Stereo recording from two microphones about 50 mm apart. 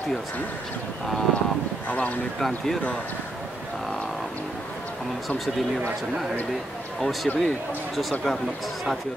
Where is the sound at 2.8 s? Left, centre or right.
Left.